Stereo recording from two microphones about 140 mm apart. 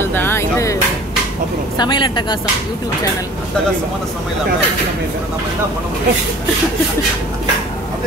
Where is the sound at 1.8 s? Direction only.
35° left (ahead or behind).